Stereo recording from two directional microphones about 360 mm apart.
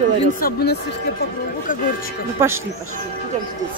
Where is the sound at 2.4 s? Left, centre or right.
Centre.